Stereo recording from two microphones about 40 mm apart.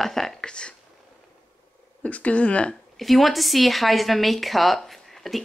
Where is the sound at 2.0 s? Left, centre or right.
Left.